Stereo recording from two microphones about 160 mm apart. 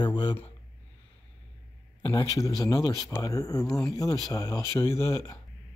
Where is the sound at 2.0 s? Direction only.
25° left (ahead or behind).